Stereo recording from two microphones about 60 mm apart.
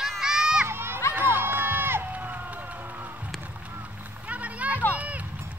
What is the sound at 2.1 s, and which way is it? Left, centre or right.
Run, right.